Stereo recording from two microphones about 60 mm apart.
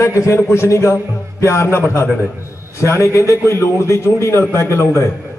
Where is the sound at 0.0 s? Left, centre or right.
Left.